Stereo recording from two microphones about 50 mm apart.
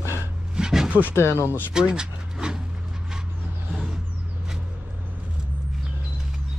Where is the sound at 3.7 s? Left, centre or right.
Centre.